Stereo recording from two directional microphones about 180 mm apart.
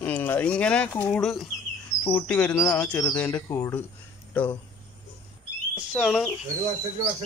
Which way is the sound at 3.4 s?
15° left (ahead or behind).